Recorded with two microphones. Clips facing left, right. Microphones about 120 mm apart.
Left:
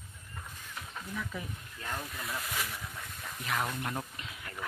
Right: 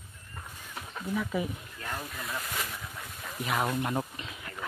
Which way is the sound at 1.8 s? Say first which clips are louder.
Right 1 dB; centre (ahead or behind).